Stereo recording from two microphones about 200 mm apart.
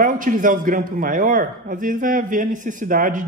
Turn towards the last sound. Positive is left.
turn(degrees=-40)  # may be behind; listen again after turning